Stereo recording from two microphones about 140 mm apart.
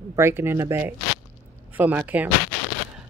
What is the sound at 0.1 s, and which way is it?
Speech, 20° right (ahead or behind).